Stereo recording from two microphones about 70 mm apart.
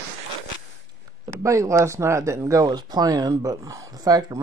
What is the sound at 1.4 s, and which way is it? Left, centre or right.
Speech, right.